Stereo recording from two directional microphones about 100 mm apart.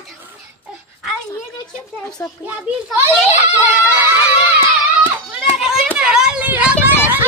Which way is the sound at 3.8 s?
15° right (ahead or behind).